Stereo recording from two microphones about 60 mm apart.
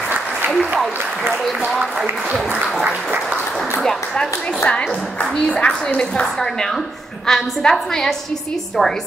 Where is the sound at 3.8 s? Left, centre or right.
Centre.